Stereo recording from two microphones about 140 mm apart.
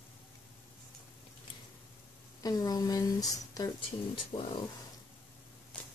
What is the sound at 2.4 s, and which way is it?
Speech, 25° left (ahead or behind).